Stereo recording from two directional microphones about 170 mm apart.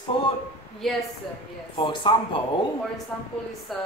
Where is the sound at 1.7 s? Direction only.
30° left (ahead or behind).